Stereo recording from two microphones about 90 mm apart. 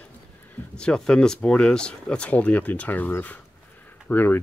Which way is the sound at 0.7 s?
10° left (ahead or behind).